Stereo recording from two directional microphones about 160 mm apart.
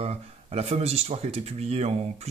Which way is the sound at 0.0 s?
40° right (ahead or behind).